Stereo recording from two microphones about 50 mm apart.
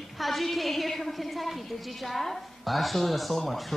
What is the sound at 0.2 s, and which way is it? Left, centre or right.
Speech, centre.